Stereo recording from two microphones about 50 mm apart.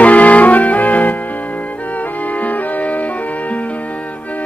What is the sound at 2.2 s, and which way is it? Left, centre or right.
Music, left.